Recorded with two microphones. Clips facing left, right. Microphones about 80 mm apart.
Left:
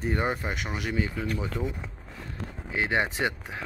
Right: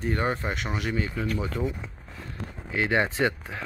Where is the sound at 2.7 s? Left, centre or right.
Left.